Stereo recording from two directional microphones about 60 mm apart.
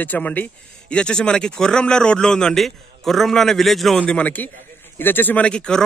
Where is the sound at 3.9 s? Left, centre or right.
Centre.